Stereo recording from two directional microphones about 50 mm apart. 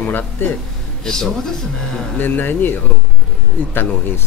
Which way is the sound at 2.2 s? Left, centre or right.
Left.